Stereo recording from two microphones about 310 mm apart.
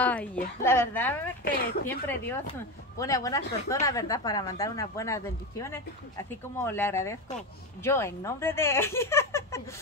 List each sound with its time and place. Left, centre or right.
0.0 s speech: centre
1.4 s speech: left
1.9 s speech: centre